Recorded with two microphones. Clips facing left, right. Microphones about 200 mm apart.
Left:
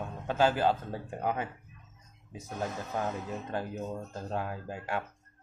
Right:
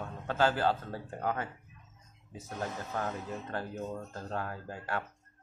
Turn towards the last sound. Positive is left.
turn(degrees=15)  # may be behind; listen again after turning